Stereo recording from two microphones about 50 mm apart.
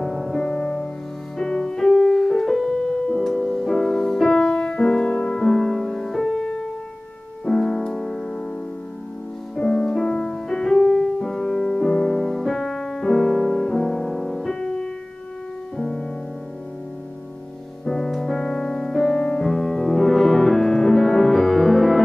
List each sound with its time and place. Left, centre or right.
0.0 s music: centre
7.4 s piano: centre
9.6 s music: centre
14.5 s music: centre
17.8 s music: centre